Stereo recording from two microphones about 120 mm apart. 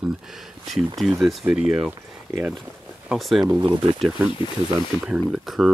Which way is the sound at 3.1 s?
Centre (ahead or behind).